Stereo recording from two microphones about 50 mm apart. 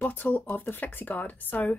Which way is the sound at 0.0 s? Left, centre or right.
Left.